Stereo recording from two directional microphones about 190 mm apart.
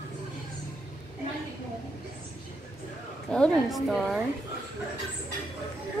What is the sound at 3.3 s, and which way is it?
Speech, 5° left (ahead or behind).